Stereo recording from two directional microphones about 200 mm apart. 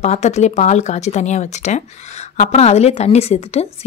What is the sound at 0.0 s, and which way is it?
Speech, 35° left (ahead or behind).